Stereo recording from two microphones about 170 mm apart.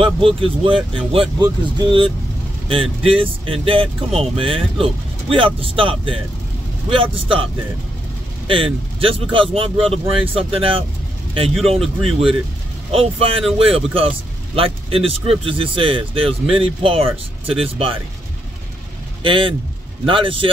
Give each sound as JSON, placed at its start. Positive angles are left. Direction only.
{"t": 0.0, "sound": "speech", "side_deg": -30}
{"t": 8.5, "sound": "speech", "side_deg": -30}
{"t": 12.9, "sound": "speech", "side_deg": -35}
{"t": 19.2, "sound": "speech", "side_deg": -30}